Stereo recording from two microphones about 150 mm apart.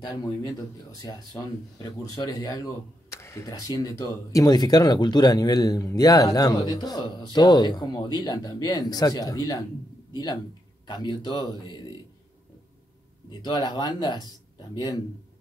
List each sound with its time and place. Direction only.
1.8 s speech: 25° left (ahead or behind)
13.3 s speech: 30° left (ahead or behind)